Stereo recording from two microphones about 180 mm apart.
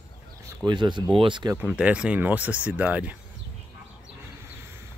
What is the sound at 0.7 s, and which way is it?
Speech, 25° right (ahead or behind).